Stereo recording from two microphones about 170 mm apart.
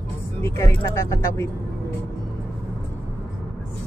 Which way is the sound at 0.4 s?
15° left (ahead or behind).